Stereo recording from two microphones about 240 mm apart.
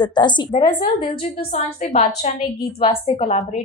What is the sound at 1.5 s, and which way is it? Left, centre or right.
A woman's voice, left.